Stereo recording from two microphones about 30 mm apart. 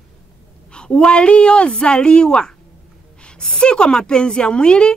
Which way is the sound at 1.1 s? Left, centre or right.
Left.